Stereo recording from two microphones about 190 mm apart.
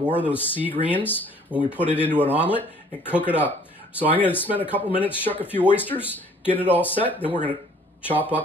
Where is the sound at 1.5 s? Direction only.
5° right (ahead or behind).